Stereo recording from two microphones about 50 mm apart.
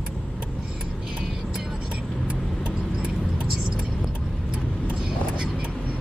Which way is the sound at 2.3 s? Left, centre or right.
Right.